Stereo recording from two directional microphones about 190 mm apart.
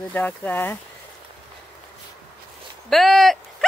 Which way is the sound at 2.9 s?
Centre (ahead or behind).